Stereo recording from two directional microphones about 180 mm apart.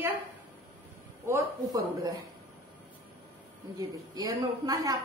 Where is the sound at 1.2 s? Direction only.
15° right (ahead or behind).